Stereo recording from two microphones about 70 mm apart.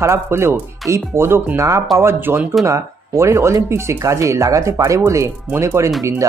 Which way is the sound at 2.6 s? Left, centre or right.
Right.